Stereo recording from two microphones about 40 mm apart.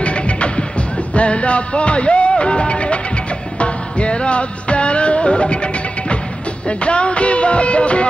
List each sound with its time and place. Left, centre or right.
0.0 s music: left